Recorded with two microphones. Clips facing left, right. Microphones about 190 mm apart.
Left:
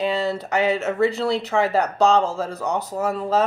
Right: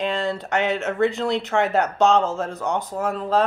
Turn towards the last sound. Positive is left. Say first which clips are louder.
# left 1 dB
turn(degrees=5)  # may be behind; listen again after turning